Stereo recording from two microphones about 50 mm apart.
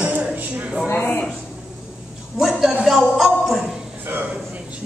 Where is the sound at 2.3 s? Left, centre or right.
Centre.